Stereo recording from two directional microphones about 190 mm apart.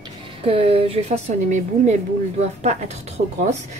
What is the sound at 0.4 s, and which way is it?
A woman's voice, 30° right (ahead or behind).